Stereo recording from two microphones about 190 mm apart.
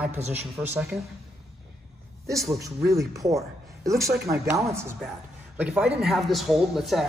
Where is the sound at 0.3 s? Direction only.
5° right (ahead or behind).